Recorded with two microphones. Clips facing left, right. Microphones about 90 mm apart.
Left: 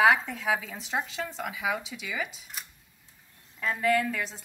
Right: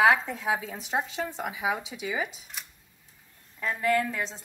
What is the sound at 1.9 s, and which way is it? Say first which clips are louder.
Speech: right 3 dB; 35° right (ahead or behind).